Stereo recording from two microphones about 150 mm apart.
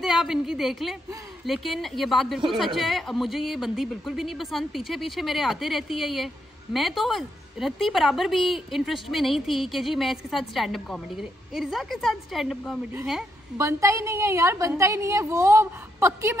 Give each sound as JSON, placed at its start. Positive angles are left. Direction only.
{"t": 0.0, "sound": "a woman's voice", "side_deg": 0}
{"t": 13.6, "sound": "a woman's voice", "side_deg": -20}